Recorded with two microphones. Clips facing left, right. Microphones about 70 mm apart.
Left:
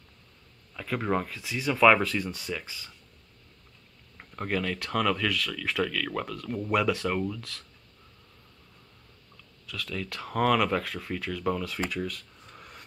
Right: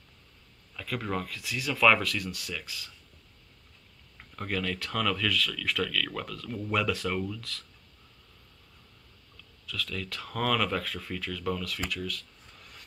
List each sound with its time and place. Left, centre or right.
0.7 s speech: left
4.2 s speech: centre
9.7 s speech: centre
11.8 s speech: left
12.5 s vehicle: left